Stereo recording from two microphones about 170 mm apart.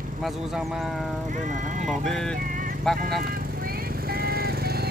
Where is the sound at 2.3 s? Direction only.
50° right (ahead or behind).